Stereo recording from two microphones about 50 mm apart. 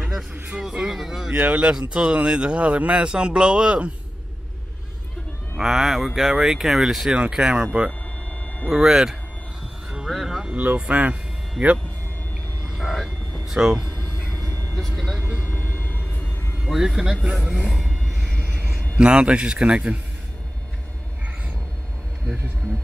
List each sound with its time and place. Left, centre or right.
0.6 s speech: centre
1.3 s speech: right
5.6 s speech: centre
10.5 s speech: right
12.6 s a sound: centre
13.5 s speech: centre
14.2 s vehicle: centre
14.8 s speech: centre
15.4 s vehicle: left
16.6 s speech: centre
17.7 s a sound: centre
18.9 s speech: right